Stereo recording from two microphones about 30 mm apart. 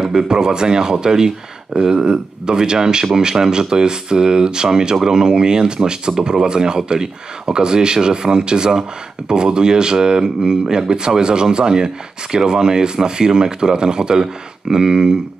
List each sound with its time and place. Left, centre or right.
0.0 s speech: centre